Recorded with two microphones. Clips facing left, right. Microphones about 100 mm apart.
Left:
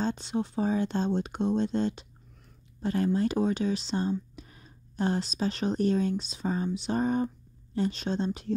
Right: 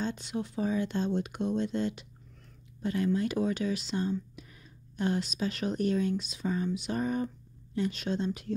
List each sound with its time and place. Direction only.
0.0 s speech: 30° left (ahead or behind)